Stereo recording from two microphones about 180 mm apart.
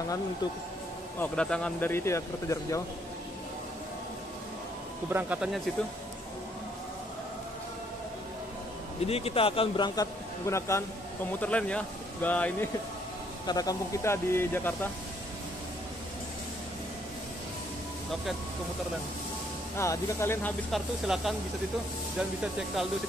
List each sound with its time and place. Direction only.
1.2 s speech: 5° left (ahead or behind)
5.1 s speech: 5° right (ahead or behind)
9.0 s a man's voice: 35° left (ahead or behind); by 12.6 s 10° left (ahead or behind)
13.5 s speech: 20° left (ahead or behind)
19.8 s speech: 15° left (ahead or behind)
20.7 s speech: centre (ahead or behind)
22.4 s speech: 5° right (ahead or behind)